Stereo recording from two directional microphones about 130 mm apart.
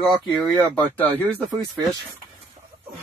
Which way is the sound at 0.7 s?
15° left (ahead or behind).